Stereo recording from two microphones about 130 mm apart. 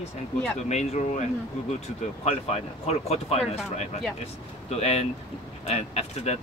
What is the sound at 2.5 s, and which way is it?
Speech, 55° left (ahead or behind).